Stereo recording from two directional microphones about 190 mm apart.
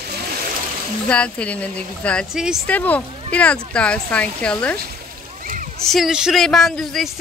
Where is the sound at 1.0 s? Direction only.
5° left (ahead or behind).